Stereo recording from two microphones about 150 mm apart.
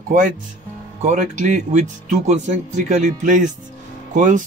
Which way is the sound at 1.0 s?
55° right (ahead or behind).